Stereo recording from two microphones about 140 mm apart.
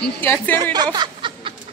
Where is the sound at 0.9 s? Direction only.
35° right (ahead or behind).